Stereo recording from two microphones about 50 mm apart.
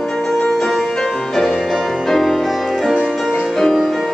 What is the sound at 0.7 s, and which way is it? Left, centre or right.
Music, centre.